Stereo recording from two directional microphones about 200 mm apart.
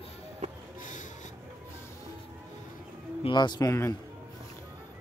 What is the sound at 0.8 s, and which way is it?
Snort, 40° left (ahead or behind).